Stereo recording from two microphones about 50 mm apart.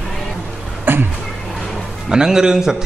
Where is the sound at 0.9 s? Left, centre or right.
Right.